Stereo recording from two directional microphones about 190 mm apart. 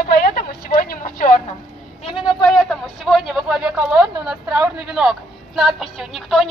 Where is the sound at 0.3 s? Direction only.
50° left (ahead or behind).